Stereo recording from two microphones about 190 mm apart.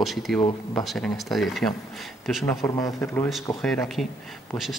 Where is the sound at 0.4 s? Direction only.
25° left (ahead or behind).